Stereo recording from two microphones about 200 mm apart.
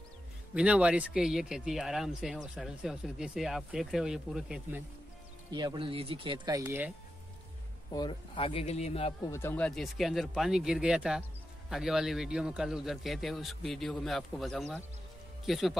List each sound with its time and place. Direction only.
0.6 s speech: 5° right (ahead or behind)
5.5 s speech: 20° right (ahead or behind)
7.9 s speech: 25° left (ahead or behind)
9.3 s speech: 10° left (ahead or behind)